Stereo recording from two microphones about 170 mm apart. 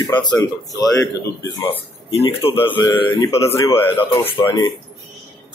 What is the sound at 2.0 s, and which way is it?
Speech, 30° left (ahead or behind).